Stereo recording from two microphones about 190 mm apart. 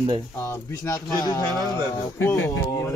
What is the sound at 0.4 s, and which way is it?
A man's voice, 15° left (ahead or behind).